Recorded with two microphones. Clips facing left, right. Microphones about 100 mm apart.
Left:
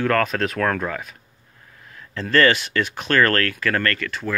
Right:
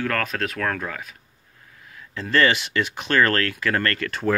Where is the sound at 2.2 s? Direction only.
15° right (ahead or behind).